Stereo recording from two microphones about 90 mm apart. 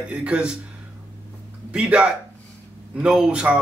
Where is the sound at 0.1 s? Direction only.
10° right (ahead or behind).